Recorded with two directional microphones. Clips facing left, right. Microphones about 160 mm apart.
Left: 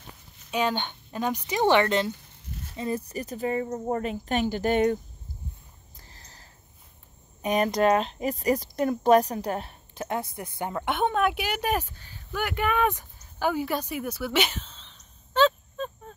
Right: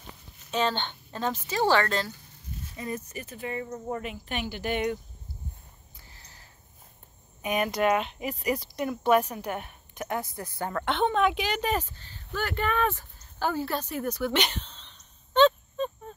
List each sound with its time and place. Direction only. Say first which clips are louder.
0.5 s speech: left 1 dB; 10° left (ahead or behind); by 4.9 s 45° left (ahead or behind)
5.9 s a sound: left 3 dB; 40° left (ahead or behind)
7.4 s speech: left 3 dB; 35° left (ahead or behind); by 16.2 s centre (ahead or behind)